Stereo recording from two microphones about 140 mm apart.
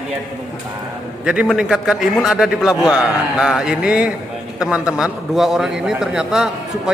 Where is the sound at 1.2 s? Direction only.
5° right (ahead or behind).